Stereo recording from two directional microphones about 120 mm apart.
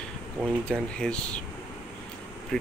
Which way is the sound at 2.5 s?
5° left (ahead or behind).